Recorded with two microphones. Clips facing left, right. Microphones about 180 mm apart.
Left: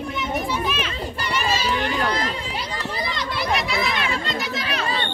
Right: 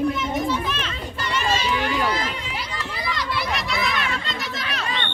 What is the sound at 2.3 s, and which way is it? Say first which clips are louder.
Run: left 2 dB; 35° left (ahead or behind).